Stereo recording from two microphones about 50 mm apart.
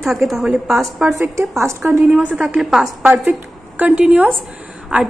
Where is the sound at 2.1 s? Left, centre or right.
Right.